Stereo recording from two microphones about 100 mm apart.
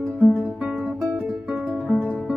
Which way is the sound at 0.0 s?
10° left (ahead or behind).